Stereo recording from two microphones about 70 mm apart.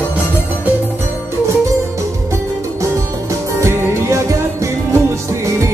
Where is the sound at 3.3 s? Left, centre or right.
Right.